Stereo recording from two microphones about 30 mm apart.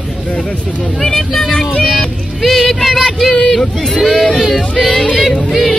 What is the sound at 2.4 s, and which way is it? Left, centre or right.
Music, centre.